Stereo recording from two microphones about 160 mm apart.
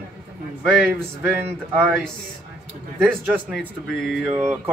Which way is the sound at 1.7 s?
15° right (ahead or behind).